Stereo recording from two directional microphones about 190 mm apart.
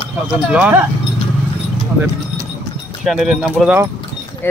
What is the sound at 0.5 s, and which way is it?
Speech, 5° right (ahead or behind).